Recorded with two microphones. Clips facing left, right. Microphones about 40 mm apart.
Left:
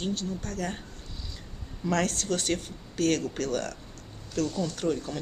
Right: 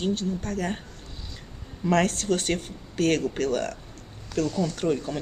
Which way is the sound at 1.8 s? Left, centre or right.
Centre.